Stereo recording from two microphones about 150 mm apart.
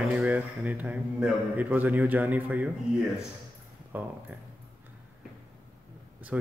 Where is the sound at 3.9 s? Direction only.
10° right (ahead or behind).